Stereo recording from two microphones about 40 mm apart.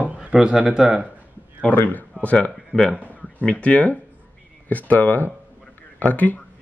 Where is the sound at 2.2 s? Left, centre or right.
Left.